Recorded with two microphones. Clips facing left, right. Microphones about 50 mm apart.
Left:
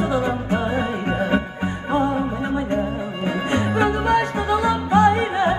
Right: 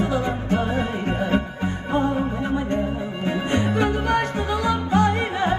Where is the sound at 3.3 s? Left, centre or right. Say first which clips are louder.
Left 1 dB; left.